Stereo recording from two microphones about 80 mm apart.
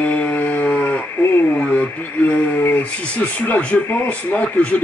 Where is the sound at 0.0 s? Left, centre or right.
Centre.